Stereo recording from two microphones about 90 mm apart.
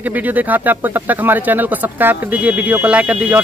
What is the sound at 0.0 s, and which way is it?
A woman's voice, 20° right (ahead or behind).